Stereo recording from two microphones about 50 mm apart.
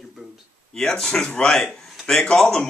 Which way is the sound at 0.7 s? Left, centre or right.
Centre.